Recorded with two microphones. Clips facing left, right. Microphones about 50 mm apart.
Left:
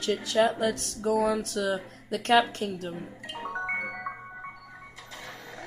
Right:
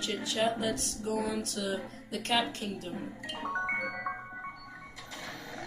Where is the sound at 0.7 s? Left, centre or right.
Left.